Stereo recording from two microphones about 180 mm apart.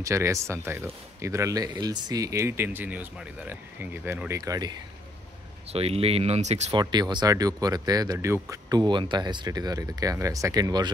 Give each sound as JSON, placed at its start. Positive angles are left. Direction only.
{"t": 0.0, "sound": "speech", "side_deg": -15}
{"t": 5.7, "sound": "speech", "side_deg": -35}
{"t": 6.7, "sound": "speech", "side_deg": -25}